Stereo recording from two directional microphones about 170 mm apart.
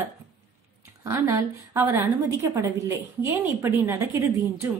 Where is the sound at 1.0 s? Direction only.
15° right (ahead or behind).